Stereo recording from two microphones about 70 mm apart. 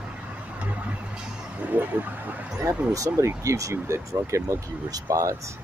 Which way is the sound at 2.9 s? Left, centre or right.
Right.